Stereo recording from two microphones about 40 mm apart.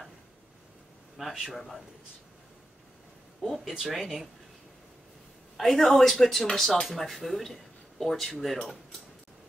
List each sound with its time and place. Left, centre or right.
1.1 s speech: centre
3.4 s speech: centre
5.6 s speech: centre